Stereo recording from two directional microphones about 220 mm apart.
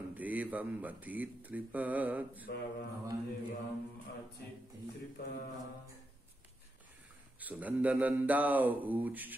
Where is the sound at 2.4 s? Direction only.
45° left (ahead or behind).